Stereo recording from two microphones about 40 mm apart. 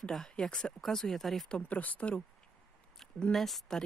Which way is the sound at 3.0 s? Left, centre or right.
Centre.